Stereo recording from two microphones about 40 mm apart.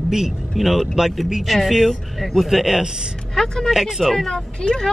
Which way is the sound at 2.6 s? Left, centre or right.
Centre.